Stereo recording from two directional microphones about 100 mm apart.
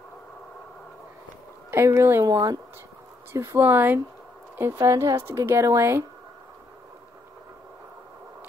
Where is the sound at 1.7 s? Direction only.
25° right (ahead or behind).